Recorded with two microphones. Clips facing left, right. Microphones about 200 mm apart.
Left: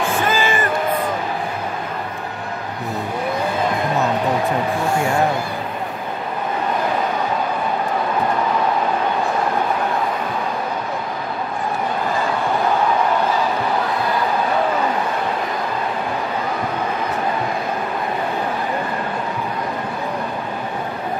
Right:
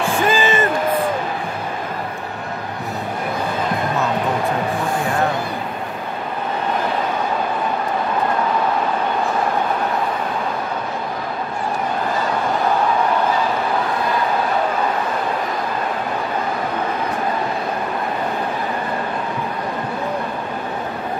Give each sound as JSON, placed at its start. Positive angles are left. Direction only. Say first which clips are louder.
{"t": 0.3, "sound": "music", "louder": "right 2 dB", "side_deg": -20}